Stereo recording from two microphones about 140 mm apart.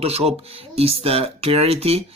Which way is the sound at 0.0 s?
45° right (ahead or behind).